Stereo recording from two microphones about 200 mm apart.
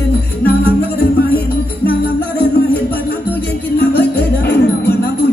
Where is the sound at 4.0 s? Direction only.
55° left (ahead or behind).